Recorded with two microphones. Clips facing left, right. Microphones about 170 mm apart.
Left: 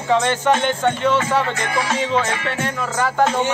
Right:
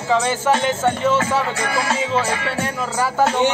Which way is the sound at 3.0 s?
5° right (ahead or behind).